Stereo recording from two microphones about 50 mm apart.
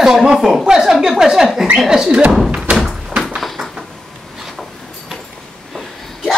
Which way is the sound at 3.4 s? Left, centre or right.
Centre.